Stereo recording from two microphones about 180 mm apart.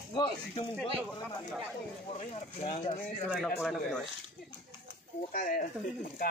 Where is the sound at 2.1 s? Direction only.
35° left (ahead or behind).